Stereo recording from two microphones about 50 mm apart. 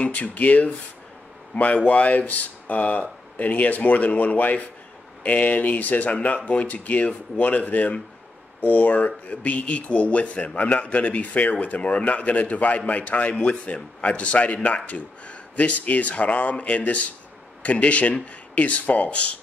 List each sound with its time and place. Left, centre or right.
0.0 s speech: left